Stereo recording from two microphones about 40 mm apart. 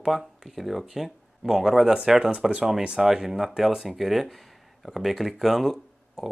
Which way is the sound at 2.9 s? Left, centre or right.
Centre.